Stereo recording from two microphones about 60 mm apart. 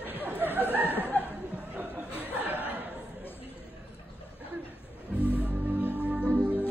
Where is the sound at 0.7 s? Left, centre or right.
Left.